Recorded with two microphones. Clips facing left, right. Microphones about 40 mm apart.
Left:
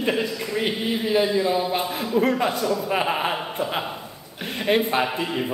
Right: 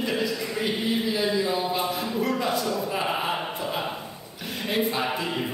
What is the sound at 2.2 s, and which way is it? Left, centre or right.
Speech, left.